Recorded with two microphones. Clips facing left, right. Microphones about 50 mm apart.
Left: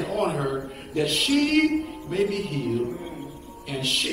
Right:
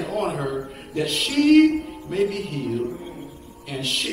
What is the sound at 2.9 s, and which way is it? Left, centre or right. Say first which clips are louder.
Music: even; left.